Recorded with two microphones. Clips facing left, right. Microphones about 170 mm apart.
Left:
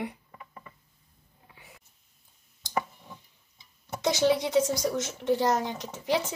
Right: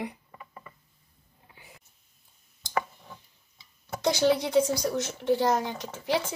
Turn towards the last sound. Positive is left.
turn(degrees=0)  # may be behind; listen again after turning